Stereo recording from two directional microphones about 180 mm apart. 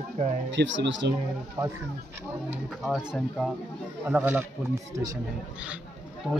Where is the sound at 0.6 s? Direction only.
90° right.